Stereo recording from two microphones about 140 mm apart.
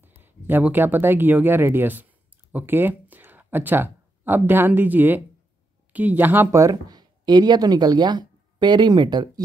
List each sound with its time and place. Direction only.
0.0 s speech: 15° right (ahead or behind); by 9.4 s 30° right (ahead or behind)